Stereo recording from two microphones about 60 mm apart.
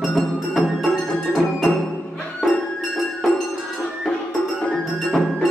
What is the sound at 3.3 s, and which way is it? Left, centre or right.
Music, centre.